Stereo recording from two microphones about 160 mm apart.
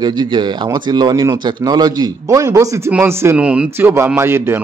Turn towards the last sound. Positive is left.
turn(degrees=-15)  # may be behind; listen again after turning